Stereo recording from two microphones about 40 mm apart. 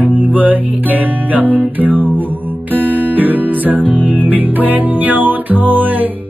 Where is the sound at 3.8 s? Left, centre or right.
Left.